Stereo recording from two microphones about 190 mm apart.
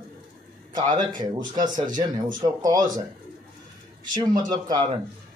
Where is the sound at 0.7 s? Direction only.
20° right (ahead or behind).